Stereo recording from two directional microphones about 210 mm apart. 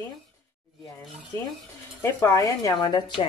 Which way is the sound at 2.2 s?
15° left (ahead or behind).